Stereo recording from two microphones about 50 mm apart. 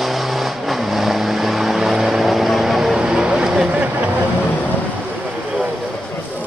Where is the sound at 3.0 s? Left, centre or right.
Centre.